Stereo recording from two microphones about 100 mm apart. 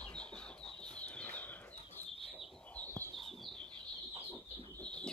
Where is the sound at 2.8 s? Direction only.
20° left (ahead or behind).